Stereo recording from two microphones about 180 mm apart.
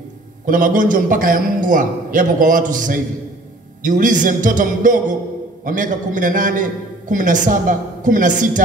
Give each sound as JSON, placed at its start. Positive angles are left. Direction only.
{"t": 0.5, "sound": "a man's voice", "side_deg": -50}